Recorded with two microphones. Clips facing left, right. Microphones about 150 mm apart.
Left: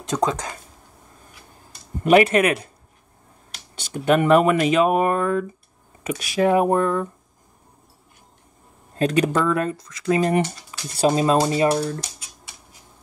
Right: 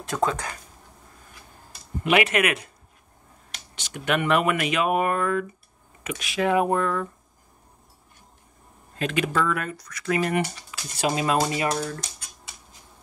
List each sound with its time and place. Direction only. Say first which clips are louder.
0.0 s speech: left 3 dB; 20° left (ahead or behind)
2.0 s speech: left 6 dB; 35° left (ahead or behind)
3.9 s speech: left 7 dB; 35° left (ahead or behind)
8.9 s speech: left 5 dB; 40° left (ahead or behind)